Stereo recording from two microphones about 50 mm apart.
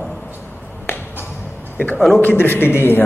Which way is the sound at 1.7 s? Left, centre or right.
Left.